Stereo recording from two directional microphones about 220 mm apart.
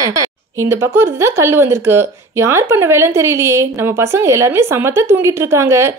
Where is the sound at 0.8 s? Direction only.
10° right (ahead or behind).